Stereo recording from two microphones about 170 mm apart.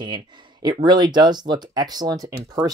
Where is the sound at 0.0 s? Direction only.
25° right (ahead or behind).